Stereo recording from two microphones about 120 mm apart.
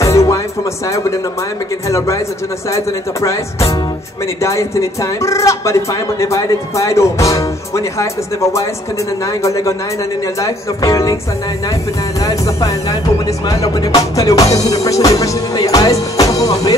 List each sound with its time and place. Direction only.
0.0 s music: 25° left (ahead or behind)
0.8 s speech: 25° left (ahead or behind)
4.4 s speech: 25° left (ahead or behind)
12.2 s speech: 30° left (ahead or behind)